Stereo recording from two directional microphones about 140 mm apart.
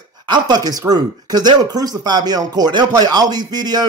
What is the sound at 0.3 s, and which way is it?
Speech, 30° right (ahead or behind).